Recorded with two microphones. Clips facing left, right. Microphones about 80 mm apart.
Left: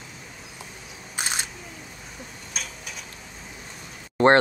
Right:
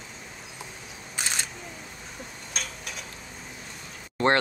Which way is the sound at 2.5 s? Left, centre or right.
Centre.